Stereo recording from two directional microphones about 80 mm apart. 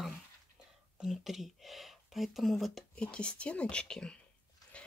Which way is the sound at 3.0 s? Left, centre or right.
Centre.